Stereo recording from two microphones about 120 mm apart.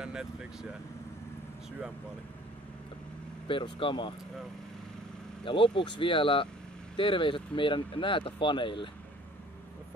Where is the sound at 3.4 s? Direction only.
45° left (ahead or behind).